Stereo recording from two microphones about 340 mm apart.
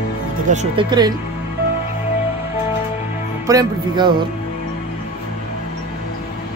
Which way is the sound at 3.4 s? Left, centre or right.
Centre.